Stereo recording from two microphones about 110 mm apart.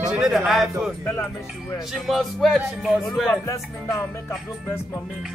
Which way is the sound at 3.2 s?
30° left (ahead or behind).